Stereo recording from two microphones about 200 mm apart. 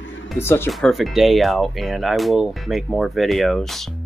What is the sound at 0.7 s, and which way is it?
Speech, centre (ahead or behind).